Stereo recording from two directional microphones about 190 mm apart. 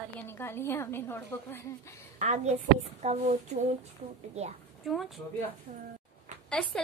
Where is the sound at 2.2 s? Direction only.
35° right (ahead or behind).